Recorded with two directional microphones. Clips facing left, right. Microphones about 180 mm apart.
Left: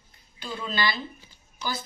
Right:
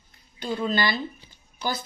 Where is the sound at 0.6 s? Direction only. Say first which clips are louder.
Right 3 dB; 45° right (ahead or behind).